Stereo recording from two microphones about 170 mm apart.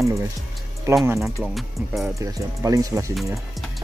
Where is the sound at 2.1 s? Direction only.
20° right (ahead or behind).